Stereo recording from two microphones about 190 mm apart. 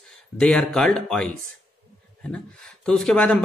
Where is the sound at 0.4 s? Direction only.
5° left (ahead or behind).